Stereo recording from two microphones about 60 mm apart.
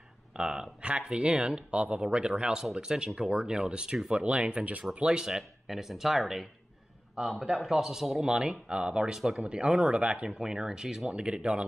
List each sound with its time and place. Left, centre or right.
0.4 s speech: centre